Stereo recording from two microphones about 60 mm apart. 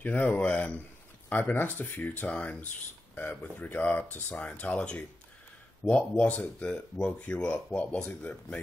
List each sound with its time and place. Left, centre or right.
0.0 s speech: left
1.3 s speech: left; by 8.5 s centre